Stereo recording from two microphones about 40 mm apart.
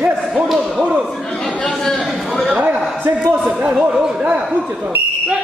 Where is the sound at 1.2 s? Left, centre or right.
Centre.